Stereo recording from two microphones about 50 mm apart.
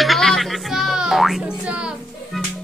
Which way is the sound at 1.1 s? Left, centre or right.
Centre.